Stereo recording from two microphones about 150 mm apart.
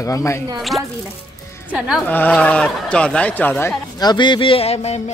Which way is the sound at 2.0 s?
10° left (ahead or behind).